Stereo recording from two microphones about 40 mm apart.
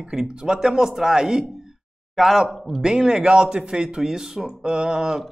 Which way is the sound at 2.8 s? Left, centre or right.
Right.